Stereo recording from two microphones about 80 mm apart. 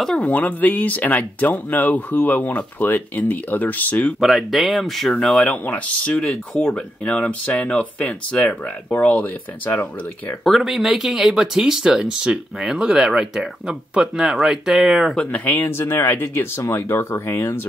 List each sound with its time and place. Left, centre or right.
0.2 s speech: centre
4.2 s speech: centre; by 9.8 s left
10.4 s speech: centre
15.1 s speech: centre